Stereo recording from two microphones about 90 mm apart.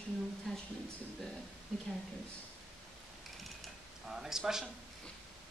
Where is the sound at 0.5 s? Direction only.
5° left (ahead or behind).